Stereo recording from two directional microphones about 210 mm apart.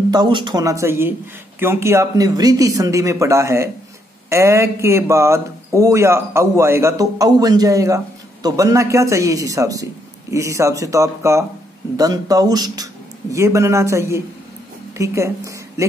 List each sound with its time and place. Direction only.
0.1 s speech: 20° right (ahead or behind)